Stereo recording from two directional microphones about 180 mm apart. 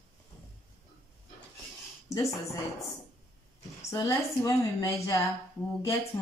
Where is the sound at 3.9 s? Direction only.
20° left (ahead or behind).